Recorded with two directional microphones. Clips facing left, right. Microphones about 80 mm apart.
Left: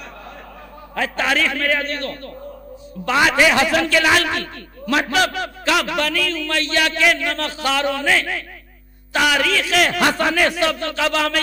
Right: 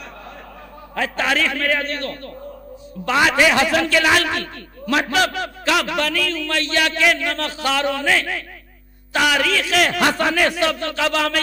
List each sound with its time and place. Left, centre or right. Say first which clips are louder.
0.9 s a man's voice: even; centre